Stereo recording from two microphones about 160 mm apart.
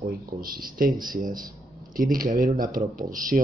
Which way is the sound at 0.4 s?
60° right (ahead or behind).